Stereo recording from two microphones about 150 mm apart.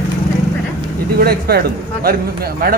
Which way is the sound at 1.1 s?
90° right.